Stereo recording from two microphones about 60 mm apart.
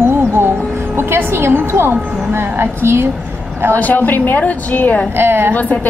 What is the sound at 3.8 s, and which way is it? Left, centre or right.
A woman's voice, left.